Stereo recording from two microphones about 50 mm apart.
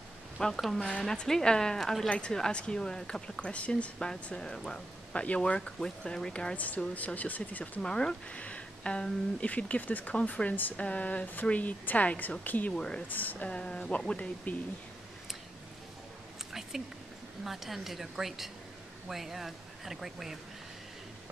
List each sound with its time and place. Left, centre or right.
0.4 s speech: centre
4.1 s speech: centre
6.5 s a woman's voice: left
7.8 s speech: centre
8.3 s a woman's voice: left
12.7 s speech: centre
13.1 s a woman's voice: left
13.4 s speech: left
17.4 s speech: centre